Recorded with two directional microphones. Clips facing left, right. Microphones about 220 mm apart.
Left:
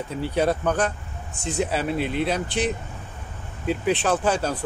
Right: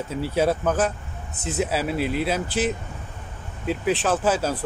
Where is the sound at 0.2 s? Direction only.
5° right (ahead or behind).